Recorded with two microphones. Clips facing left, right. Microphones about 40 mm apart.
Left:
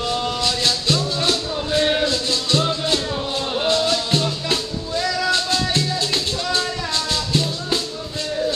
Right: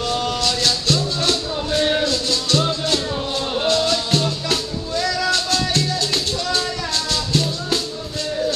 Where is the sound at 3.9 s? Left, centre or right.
Centre.